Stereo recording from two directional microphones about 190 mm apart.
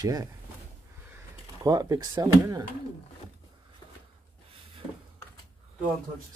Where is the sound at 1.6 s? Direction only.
20° right (ahead or behind).